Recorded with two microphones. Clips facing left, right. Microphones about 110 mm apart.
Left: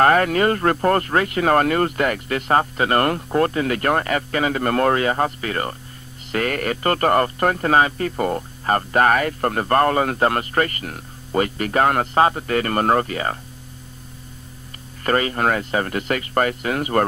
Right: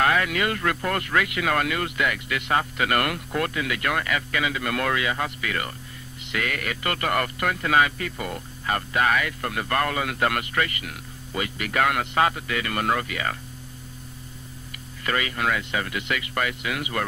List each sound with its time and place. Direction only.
0.0 s speech: 45° left (ahead or behind)
15.0 s speech: 40° left (ahead or behind)